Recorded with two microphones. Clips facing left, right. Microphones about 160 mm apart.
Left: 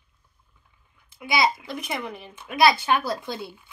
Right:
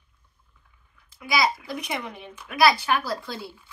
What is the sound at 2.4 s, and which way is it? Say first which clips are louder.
Speech: left 1 dB; 25° left (ahead or behind).